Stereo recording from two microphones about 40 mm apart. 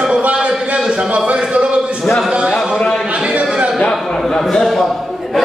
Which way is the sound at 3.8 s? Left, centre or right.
Centre.